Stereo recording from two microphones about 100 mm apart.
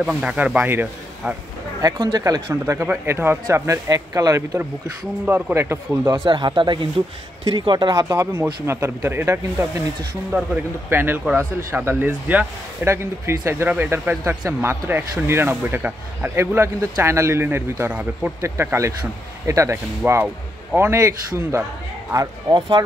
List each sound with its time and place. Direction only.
0.0 s speech: 10° right (ahead or behind)
1.8 s speech: 45° right (ahead or behind)
2.5 s a man's voice: 25° right (ahead or behind)
5.2 s a man's voice: 25° right (ahead or behind)
6.2 s speech: 55° right (ahead or behind)
7.9 s a man's voice: 35° right (ahead or behind); by 18.3 s 15° right (ahead or behind)
18.4 s a man's voice: 30° right (ahead or behind)
20.0 s a man's voice: 20° right (ahead or behind)